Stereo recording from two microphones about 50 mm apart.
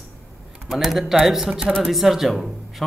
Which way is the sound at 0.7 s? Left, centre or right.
Centre.